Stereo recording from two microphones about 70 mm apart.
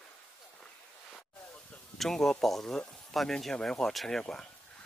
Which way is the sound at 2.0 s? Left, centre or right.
Centre.